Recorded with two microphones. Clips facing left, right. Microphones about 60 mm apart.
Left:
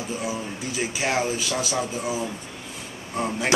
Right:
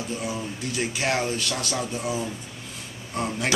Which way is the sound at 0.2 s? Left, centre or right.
Centre.